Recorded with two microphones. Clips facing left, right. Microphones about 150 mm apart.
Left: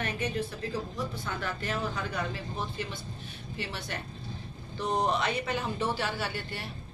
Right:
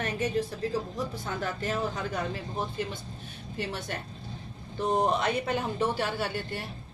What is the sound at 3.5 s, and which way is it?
A man's voice, 45° right (ahead or behind).